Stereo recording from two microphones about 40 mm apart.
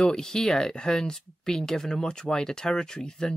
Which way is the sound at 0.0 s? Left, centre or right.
Centre.